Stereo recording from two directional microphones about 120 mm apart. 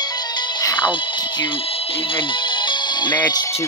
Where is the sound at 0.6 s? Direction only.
35° left (ahead or behind).